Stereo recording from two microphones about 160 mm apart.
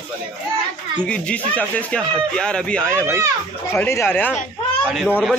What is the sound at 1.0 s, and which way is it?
Speech, 5° left (ahead or behind).